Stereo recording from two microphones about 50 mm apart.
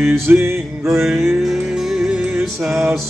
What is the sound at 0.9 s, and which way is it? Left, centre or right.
Music, centre.